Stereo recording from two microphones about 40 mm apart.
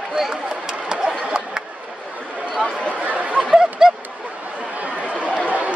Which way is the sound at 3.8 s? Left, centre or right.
Centre.